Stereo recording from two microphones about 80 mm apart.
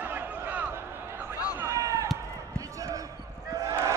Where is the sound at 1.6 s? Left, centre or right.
Right.